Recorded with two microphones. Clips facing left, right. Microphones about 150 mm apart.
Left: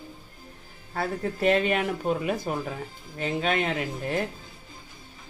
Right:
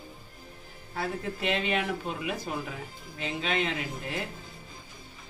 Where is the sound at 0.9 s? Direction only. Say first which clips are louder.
Left 4 dB; 45° left (ahead or behind).